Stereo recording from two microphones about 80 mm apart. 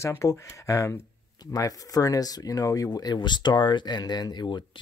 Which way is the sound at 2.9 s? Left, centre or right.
Left.